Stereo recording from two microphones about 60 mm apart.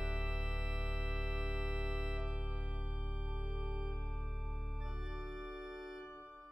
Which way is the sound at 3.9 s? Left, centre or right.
Centre.